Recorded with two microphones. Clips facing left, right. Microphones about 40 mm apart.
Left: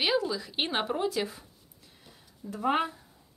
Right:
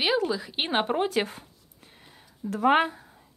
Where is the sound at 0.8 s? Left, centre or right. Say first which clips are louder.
Right 4 dB; right.